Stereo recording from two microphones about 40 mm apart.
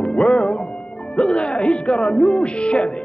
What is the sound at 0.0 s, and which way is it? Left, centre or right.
Music, left.